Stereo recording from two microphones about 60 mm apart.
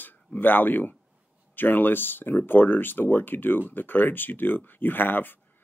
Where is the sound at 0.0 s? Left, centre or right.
Left.